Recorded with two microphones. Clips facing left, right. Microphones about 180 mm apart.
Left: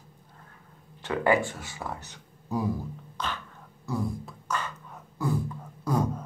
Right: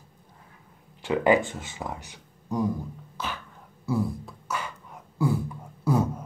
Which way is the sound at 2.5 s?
5° left (ahead or behind).